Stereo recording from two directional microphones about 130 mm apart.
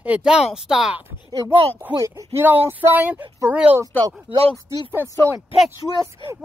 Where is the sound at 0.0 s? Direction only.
10° right (ahead or behind).